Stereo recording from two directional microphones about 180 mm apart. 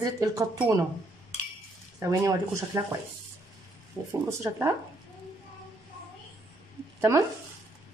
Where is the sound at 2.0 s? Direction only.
15° right (ahead or behind).